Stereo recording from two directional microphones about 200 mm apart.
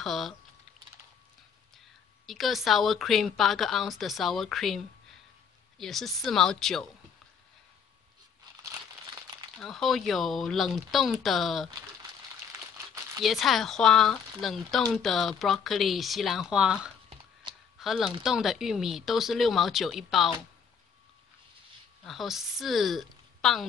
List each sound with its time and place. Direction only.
0.0 s speech: centre (ahead or behind)
2.2 s speech: centre (ahead or behind)
8.6 s crumpling: 15° right (ahead or behind)
9.6 s speech: centre (ahead or behind)
12.7 s crumpling: 15° right (ahead or behind)
13.2 s speech: centre (ahead or behind)
17.1 s a sound: 25° right (ahead or behind)
17.7 s speech: centre (ahead or behind)
22.0 s a woman's voice: centre (ahead or behind)